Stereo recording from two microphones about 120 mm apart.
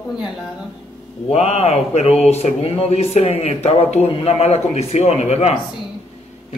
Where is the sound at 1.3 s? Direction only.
60° left (ahead or behind).